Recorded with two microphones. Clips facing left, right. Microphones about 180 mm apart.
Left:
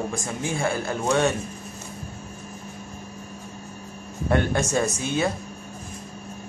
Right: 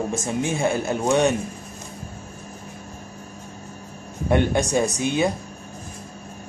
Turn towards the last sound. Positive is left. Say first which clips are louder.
# right 3 dB
turn(degrees=-15)  # may be behind; listen again after turning